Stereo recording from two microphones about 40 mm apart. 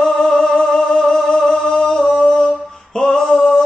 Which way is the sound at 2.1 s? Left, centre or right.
Centre.